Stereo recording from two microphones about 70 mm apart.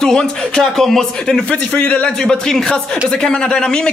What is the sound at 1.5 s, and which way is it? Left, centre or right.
Speech, left.